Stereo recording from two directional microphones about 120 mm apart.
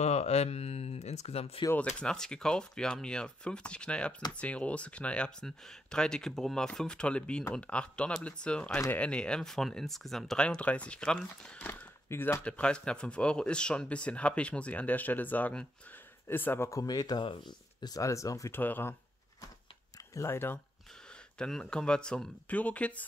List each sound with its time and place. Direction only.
0.0 s speech: 65° left (ahead or behind)
2.0 s speech: 5° left (ahead or behind)
11.6 s speech: 15° left (ahead or behind)
12.4 s speech: 10° left (ahead or behind)
20.2 s speech: 20° left (ahead or behind)
21.4 s speech: 5° left (ahead or behind)